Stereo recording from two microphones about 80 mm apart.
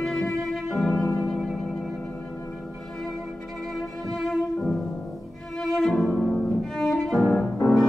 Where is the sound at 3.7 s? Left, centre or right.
Centre.